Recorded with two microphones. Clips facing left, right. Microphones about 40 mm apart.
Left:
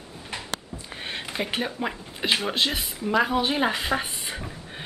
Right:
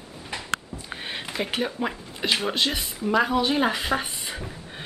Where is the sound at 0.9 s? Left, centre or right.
Centre.